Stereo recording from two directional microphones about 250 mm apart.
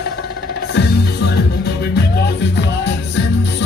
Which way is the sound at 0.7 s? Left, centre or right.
Left.